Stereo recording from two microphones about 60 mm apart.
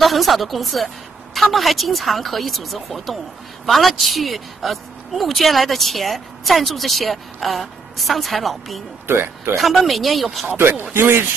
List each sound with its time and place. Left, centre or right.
0.0 s a woman's voice: centre
9.0 s speech: right
9.6 s a woman's voice: centre
10.5 s a man's voice: right